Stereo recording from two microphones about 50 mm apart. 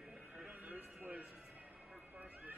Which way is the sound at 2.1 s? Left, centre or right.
Right.